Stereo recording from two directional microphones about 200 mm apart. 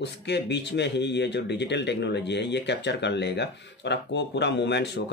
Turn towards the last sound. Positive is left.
turn(degrees=60)  # may be behind; listen again after turning